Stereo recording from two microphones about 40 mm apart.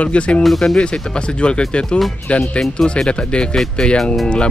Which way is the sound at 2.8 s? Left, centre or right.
Left.